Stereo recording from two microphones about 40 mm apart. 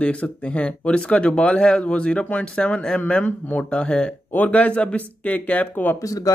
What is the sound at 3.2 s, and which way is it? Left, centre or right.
Speech, left.